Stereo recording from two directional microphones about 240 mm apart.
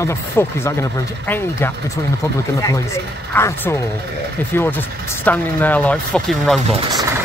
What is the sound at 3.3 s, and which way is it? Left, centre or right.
Speech, centre.